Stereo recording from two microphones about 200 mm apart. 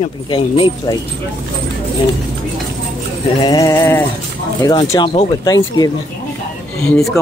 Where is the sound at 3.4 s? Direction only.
15° left (ahead or behind).